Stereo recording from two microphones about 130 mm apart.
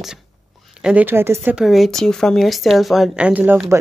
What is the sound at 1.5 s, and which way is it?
A woman's voice, centre (ahead or behind).